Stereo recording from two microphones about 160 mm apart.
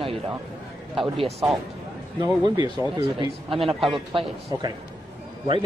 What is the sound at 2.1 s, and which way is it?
Speech, 25° right (ahead or behind).